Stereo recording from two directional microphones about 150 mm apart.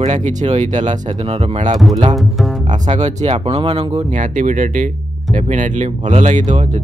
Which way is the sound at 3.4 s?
40° right (ahead or behind).